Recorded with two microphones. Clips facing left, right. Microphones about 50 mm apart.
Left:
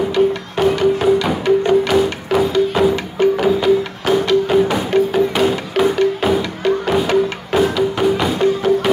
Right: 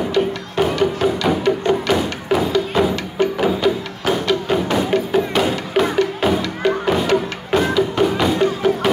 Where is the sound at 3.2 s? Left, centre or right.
Centre.